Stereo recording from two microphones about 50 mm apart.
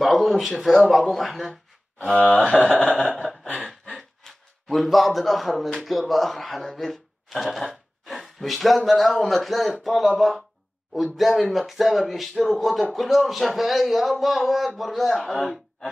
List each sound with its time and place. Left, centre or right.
0.0 s speech: centre
2.5 s speech: centre
3.9 s a sound: centre
5.9 s speech: centre